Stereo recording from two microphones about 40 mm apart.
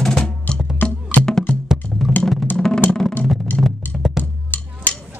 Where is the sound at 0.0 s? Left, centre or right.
Left.